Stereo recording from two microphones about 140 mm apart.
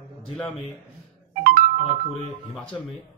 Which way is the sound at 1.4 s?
90° right.